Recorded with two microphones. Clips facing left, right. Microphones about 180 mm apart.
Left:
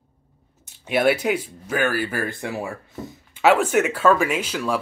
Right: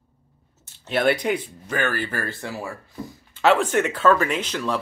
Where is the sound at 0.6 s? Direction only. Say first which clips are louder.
Left 2 dB; 10° left (ahead or behind).